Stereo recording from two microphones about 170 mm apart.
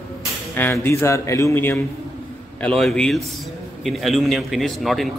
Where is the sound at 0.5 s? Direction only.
10° left (ahead or behind).